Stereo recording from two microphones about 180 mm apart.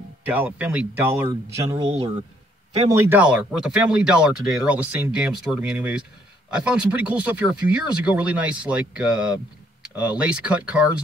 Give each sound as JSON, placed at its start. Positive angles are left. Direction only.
{"t": 0.2, "sound": "speech", "side_deg": -10}
{"t": 1.9, "sound": "speech", "side_deg": -35}
{"t": 2.9, "sound": "speech", "side_deg": -15}